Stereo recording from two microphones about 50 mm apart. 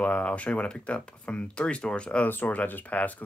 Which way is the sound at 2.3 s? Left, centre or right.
Left.